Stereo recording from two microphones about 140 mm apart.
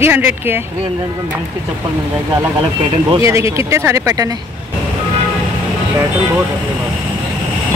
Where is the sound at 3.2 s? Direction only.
20° right (ahead or behind).